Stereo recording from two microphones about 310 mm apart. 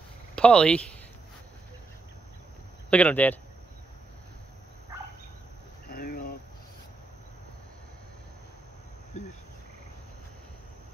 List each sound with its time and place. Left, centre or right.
0.4 s speech: centre
2.9 s speech: centre
5.9 s a sound: left